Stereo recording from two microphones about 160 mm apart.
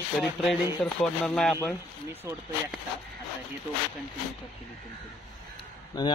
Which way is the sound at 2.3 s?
20° right (ahead or behind).